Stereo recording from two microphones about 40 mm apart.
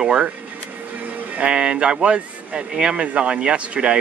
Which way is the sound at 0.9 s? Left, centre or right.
Right.